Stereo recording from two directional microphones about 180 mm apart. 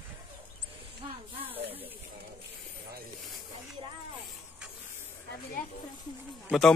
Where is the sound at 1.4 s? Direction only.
10° right (ahead or behind).